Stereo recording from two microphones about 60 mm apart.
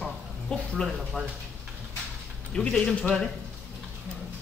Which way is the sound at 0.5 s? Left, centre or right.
Centre.